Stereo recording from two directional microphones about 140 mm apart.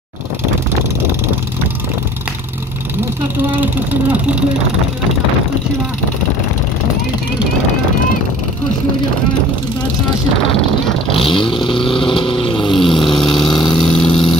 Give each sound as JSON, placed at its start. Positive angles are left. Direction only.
{"t": 3.5, "sound": "speech", "side_deg": -10}
{"t": 11.2, "sound": "vehicle", "side_deg": 35}
{"t": 13.0, "sound": "vehicle", "side_deg": 0}